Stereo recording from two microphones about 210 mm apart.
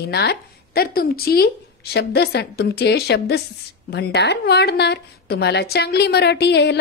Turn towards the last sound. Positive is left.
turn(degrees=55)  # may be behind; listen again after turning